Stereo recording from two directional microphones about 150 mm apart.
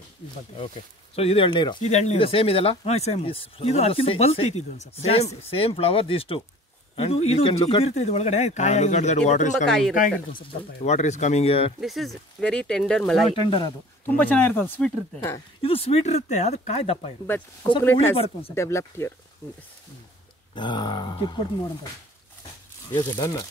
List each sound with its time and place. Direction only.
1.1 s speech: 40° left (ahead or behind)
1.8 s speech: 50° left (ahead or behind)
9.7 s speech: 5° left (ahead or behind)
9.9 s speech: 70° left (ahead or behind)
10.9 s speech: 50° left (ahead or behind)
11.8 s speech: centre (ahead or behind)
13.3 s speech: 35° left (ahead or behind)
14.0 s speech: 10° left (ahead or behind)
15.6 s speech: 40° left (ahead or behind)
17.6 s speech: 15° left (ahead or behind)
18.1 s speech: 40° left (ahead or behind)
18.5 s speech: 20° left (ahead or behind)
20.5 s speech: 30° left (ahead or behind)
22.8 s speech: 25° left (ahead or behind)